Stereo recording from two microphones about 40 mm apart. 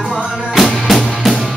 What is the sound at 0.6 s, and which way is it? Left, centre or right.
Music, centre.